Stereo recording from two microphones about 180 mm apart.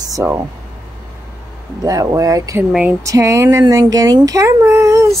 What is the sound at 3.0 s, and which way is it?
Speech, 15° right (ahead or behind).